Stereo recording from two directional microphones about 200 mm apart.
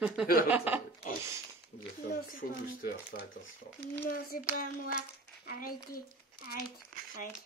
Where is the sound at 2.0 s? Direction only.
45° left (ahead or behind).